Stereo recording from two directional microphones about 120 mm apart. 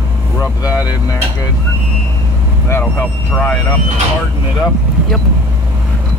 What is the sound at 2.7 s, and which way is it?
Vehicle, 20° left (ahead or behind).